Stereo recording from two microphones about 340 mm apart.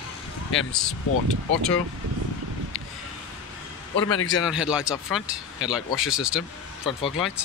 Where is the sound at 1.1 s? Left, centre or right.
Left.